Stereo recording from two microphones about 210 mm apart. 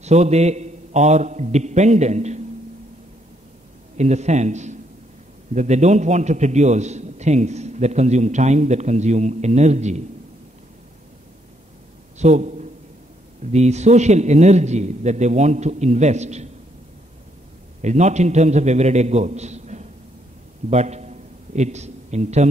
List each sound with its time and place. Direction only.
0.0 s a man's voice: 30° right (ahead or behind)
3.9 s a man's voice: 35° right (ahead or behind)
12.2 s a man's voice: 35° right (ahead or behind)
17.8 s a man's voice: 35° right (ahead or behind)
20.7 s a sound: 30° right (ahead or behind)